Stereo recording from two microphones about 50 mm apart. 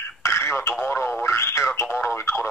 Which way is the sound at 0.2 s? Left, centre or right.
Left.